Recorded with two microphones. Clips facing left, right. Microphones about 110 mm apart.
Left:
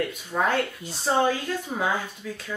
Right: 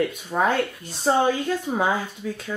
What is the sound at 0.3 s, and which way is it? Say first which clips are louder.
Speech: right 2 dB; 35° right (ahead or behind).